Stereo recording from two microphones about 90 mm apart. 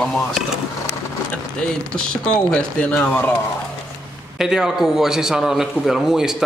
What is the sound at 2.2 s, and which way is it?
Speech, 15° left (ahead or behind).